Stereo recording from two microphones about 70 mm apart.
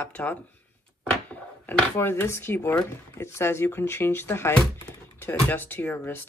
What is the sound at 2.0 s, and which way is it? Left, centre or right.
Speech, left.